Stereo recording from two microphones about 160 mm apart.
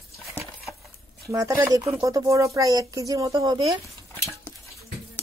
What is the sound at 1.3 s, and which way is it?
Speech, 20° right (ahead or behind).